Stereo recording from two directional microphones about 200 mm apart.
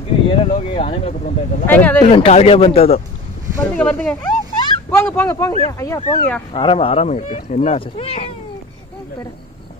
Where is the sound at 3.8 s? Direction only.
5° left (ahead or behind).